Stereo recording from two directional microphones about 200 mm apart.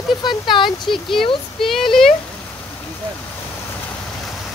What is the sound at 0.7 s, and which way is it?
Speech, centre (ahead or behind).